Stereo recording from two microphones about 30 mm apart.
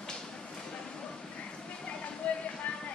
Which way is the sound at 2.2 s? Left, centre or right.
Left.